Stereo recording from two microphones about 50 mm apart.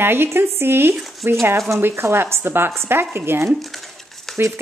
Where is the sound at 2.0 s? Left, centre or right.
Right.